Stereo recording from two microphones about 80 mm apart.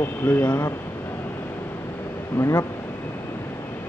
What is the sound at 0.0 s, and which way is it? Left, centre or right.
Speech, left.